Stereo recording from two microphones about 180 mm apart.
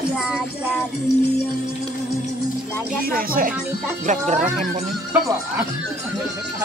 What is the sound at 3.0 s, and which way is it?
Speech, 55° right (ahead or behind).